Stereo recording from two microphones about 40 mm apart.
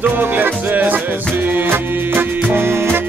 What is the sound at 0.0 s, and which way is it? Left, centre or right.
Music, right.